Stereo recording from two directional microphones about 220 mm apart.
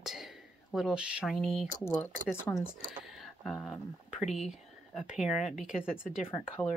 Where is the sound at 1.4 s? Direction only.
Centre (ahead or behind).